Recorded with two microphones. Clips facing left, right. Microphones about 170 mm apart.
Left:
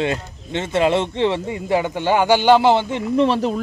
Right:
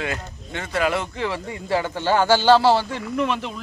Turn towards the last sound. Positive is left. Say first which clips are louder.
# left 7 dB
turn(degrees=35)  # may be behind; listen again after turning